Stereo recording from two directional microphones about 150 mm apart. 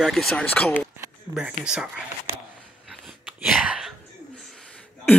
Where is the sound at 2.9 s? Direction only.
Centre (ahead or behind).